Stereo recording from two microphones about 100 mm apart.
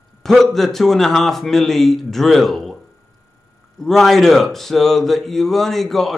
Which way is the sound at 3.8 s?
5° left (ahead or behind).